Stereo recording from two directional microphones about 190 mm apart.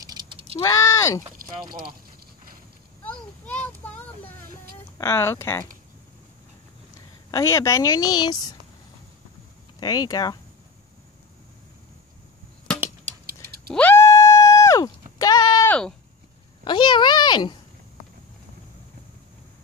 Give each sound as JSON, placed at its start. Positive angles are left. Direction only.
{"t": 0.0, "sound": "a sound", "side_deg": -25}
{"t": 0.6, "sound": "speech", "side_deg": 15}
{"t": 3.1, "sound": "a sound", "side_deg": 10}
{"t": 4.9, "sound": "speech", "side_deg": 15}
{"t": 7.2, "sound": "a woman's voice", "side_deg": 20}
{"t": 9.8, "sound": "a woman's voice", "side_deg": 20}
{"t": 13.0, "sound": "tick-tock", "side_deg": -50}
{"t": 13.7, "sound": "a sound", "side_deg": 10}
{"t": 16.6, "sound": "a woman's voice", "side_deg": 25}